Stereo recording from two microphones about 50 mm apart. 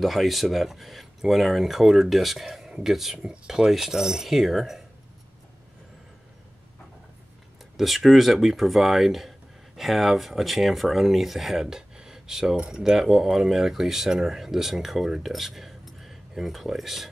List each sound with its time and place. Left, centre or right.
0.0 s speech: centre
7.7 s speech: centre